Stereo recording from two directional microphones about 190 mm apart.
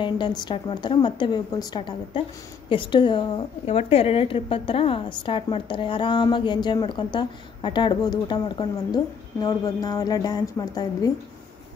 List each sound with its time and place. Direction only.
0.0 s a woman's voice: 25° left (ahead or behind)